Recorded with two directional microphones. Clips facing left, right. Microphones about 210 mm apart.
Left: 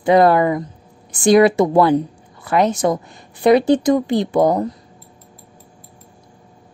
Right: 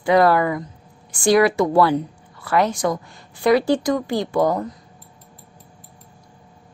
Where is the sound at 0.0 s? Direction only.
25° left (ahead or behind).